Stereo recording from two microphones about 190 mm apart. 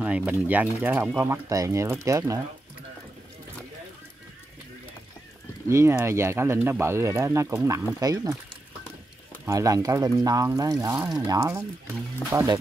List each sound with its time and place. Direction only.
0.0 s speech: 5° right (ahead or behind)
5.7 s speech: 15° right (ahead or behind)
9.5 s speech: 15° right (ahead or behind)